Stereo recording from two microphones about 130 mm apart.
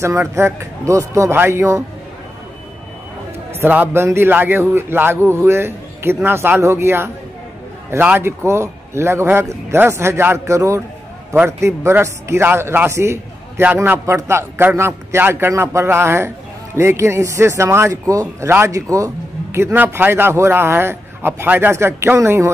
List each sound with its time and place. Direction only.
0.0 s a man's voice: 20° right (ahead or behind)
3.5 s a man's voice: 15° right (ahead or behind)